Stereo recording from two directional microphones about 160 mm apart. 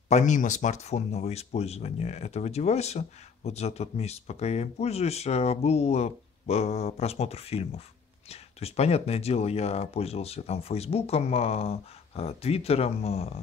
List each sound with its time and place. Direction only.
0.1 s speech: 50° left (ahead or behind)